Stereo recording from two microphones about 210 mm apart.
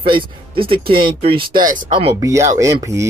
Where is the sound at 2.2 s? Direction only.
15° right (ahead or behind).